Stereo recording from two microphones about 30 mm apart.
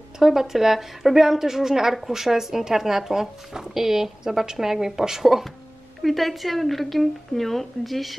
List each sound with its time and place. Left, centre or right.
0.2 s speech: centre
6.0 s a woman's voice: centre